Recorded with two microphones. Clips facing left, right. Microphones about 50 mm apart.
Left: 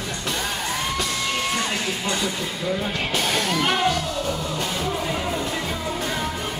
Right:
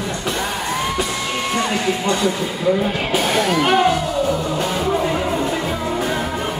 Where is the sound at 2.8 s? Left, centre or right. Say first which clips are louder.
Right 6 dB; centre.